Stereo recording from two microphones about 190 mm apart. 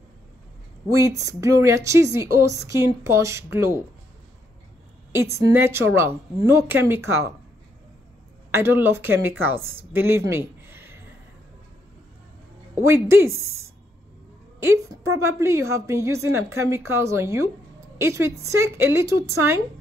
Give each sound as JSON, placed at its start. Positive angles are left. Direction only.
{"t": 1.2, "sound": "a woman's voice", "side_deg": -15}
{"t": 5.1, "sound": "a woman's voice", "side_deg": -15}
{"t": 8.5, "sound": "a woman's voice", "side_deg": -10}
{"t": 9.8, "sound": "a sound", "side_deg": -10}
{"t": 12.7, "sound": "a woman's voice", "side_deg": -15}